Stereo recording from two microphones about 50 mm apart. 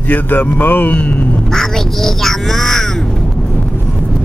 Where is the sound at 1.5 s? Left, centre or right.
Centre.